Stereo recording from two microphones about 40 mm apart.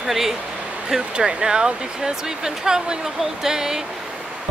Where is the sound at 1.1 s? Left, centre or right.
Right.